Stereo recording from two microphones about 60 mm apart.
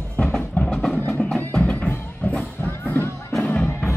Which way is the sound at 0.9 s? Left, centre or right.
Left.